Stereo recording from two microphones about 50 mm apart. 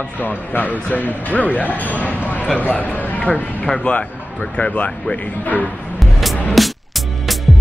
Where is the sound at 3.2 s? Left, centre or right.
Left.